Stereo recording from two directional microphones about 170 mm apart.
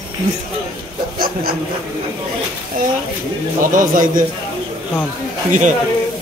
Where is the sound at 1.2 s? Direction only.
60° right (ahead or behind).